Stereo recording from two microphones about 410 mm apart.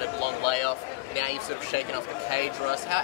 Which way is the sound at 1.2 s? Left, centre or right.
Right.